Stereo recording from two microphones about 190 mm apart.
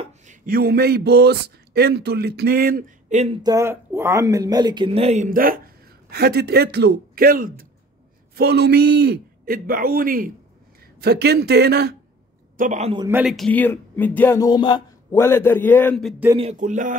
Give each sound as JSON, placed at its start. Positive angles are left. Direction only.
{"t": 0.5, "sound": "a man's voice", "side_deg": -55}
{"t": 3.4, "sound": "a man's voice", "side_deg": -15}
{"t": 8.4, "sound": "a man's voice", "side_deg": -60}
{"t": 12.5, "sound": "speech", "side_deg": -40}
{"t": 13.1, "sound": "speech", "side_deg": 0}
{"t": 15.1, "sound": "speech", "side_deg": 15}
{"t": 16.3, "sound": "a sound", "side_deg": -40}